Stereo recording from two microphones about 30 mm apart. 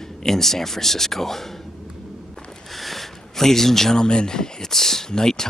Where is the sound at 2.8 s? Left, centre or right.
Centre.